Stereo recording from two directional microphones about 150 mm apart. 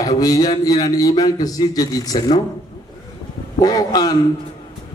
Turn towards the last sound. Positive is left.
turn(degrees=25)  # may be behind; listen again after turning